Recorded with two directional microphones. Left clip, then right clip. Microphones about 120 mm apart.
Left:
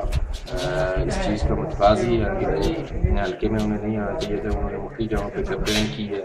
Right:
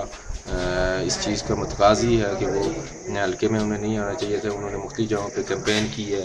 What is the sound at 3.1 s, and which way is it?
Speech, 20° right (ahead or behind).